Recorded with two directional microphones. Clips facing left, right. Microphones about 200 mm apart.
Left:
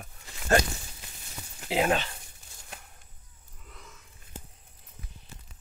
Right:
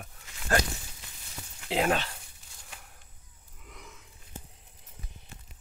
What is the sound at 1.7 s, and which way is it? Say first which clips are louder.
Speech: left 1 dB; 5° left (ahead or behind).